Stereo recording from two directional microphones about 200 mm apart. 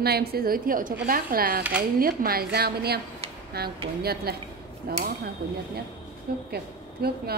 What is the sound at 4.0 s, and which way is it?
A woman's voice, 50° right (ahead or behind).